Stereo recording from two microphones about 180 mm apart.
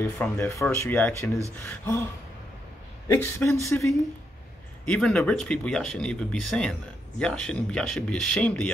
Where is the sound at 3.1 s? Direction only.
15° left (ahead or behind).